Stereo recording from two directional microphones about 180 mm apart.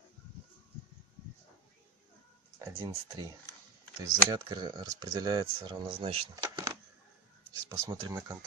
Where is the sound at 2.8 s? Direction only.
20° right (ahead or behind).